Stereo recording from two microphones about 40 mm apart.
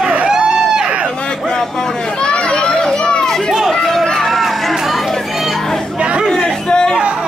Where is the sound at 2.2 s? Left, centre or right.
Left.